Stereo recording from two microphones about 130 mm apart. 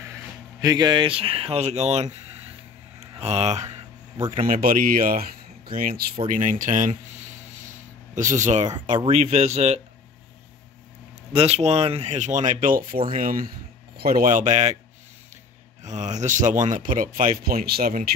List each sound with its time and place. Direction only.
0.0 s speech: 25° right (ahead or behind); by 2.0 s 55° right (ahead or behind)
3.0 s a sound: 55° right (ahead or behind)
4.5 s speech: 90° right
6.2 s speech: 80° right
7.6 s a sound: 80° right; by 8.7 s 65° right (ahead or behind)
8.9 s speech: 50° right (ahead or behind)
11.3 s speech: 55° right (ahead or behind); by 13.5 s 90° right
14.2 s speech: 75° right (ahead or behind)
15.8 s speech: 65° right (ahead or behind); by 18.0 s 90° right